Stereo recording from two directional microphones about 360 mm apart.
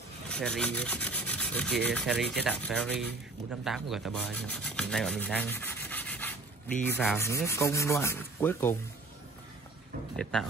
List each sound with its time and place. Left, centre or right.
0.3 s rub: centre